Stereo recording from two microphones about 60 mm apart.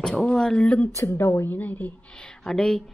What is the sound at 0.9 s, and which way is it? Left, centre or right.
A woman's voice, left.